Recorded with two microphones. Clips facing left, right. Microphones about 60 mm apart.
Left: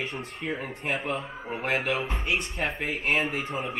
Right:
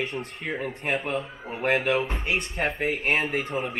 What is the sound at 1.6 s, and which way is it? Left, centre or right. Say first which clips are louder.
Speech: right 5 dB; right.